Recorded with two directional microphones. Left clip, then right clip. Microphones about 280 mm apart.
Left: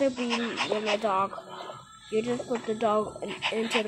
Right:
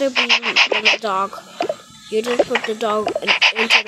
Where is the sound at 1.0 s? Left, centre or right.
Centre.